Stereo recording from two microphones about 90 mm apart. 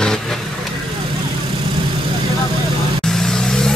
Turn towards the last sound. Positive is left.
turn(degrees=5)  # may be behind; listen again after turning